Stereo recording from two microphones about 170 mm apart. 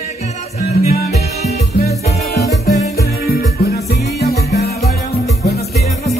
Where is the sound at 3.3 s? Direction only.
65° left (ahead or behind).